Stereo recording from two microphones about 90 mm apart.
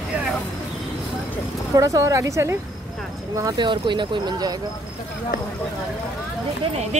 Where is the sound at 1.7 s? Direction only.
35° right (ahead or behind).